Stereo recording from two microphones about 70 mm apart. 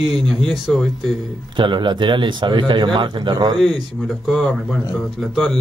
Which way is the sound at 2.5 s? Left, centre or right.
Right.